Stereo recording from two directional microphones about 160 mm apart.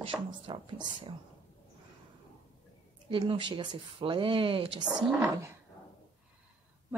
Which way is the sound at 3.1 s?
30° right (ahead or behind).